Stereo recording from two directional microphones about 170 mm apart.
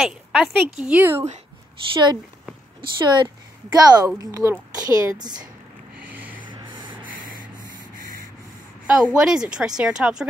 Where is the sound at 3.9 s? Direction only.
20° right (ahead or behind).